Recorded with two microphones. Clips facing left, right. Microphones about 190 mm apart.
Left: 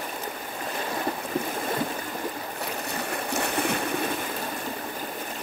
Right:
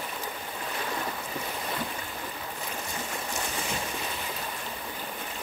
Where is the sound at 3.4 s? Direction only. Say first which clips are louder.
Left 7 dB; 60° left (ahead or behind).